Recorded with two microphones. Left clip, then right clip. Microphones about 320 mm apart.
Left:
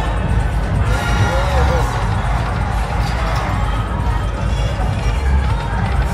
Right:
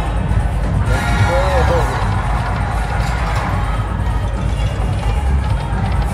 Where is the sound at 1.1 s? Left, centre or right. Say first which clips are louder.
Right 4 dB; right.